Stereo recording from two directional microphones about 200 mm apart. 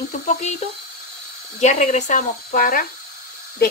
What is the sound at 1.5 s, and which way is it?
Speech, 35° left (ahead or behind).